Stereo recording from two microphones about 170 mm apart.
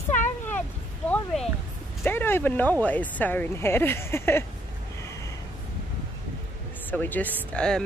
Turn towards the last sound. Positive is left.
turn(degrees=5)  # may be behind; listen again after turning